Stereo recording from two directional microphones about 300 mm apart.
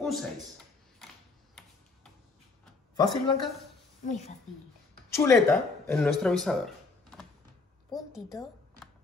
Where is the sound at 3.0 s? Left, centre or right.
Centre.